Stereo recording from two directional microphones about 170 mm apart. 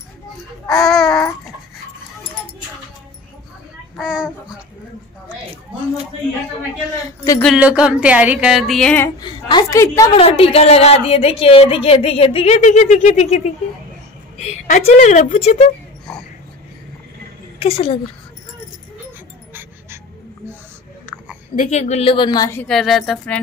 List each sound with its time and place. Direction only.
0.7 s speech: centre (ahead or behind)
3.9 s a child's voice: 5° right (ahead or behind)
7.4 s music: 5° right (ahead or behind); by 9.1 s 10° left (ahead or behind)
9.2 s a woman's voice: 25° left (ahead or behind)
10.1 s a woman's voice: 35° left (ahead or behind)
16.1 s wheeze: 5° left (ahead or behind)
17.6 s a woman's voice: 35° left (ahead or behind)
21.1 s chewing: 10° right (ahead or behind)
21.5 s a woman's voice: 40° left (ahead or behind); by 22.6 s 20° left (ahead or behind)
22.6 s music: centre (ahead or behind)